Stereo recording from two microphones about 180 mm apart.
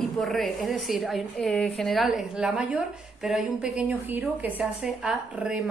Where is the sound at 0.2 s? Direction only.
Centre (ahead or behind).